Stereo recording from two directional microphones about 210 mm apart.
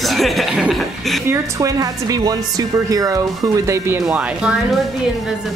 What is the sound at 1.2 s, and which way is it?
A woman's voice, 15° right (ahead or behind).